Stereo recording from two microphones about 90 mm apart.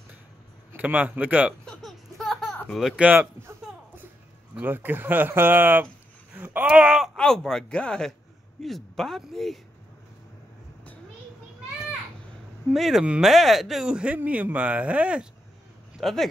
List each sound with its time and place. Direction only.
0.7 s speech: 15° right (ahead or behind)
1.7 s laughter: centre (ahead or behind)
3.0 s speech: 15° right (ahead or behind)
4.6 s speech: 20° right (ahead or behind)
6.3 s a sound: 20° right (ahead or behind)
6.6 s speech: 10° right (ahead or behind)
7.2 s speech: 5° left (ahead or behind)
12.7 s speech: centre (ahead or behind)
13.0 s speech: 15° right (ahead or behind)
13.3 s speech: centre (ahead or behind)
16.0 s speech: centre (ahead or behind)